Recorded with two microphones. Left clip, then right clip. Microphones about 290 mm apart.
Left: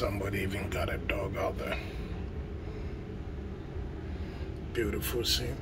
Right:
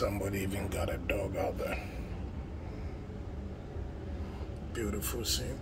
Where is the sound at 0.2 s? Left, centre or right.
Centre.